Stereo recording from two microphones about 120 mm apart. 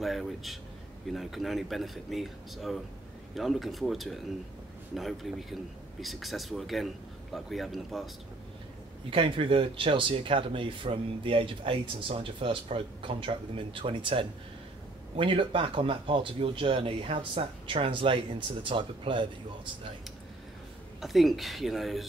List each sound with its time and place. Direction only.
0.0 s speech: centre (ahead or behind)
9.1 s speech: 50° right (ahead or behind)
21.0 s speech: centre (ahead or behind)